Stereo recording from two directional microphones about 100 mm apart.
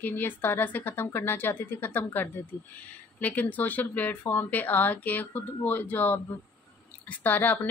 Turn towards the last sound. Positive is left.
turn(degrees=15)  # may be behind; listen again after turning